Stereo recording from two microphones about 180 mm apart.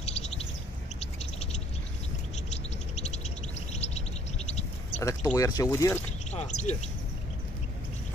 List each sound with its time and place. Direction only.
0.0 s bird: 35° left (ahead or behind)
2.5 s music: 40° left (ahead or behind)
5.0 s speech: 20° left (ahead or behind)
6.3 s speech: 40° left (ahead or behind)